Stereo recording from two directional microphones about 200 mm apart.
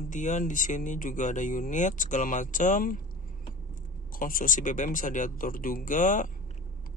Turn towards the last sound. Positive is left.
turn(degrees=40)  # may be behind; listen again after turning